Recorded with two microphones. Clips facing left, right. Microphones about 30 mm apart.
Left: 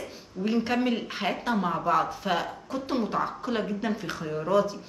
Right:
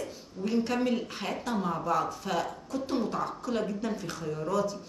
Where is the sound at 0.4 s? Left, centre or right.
Left.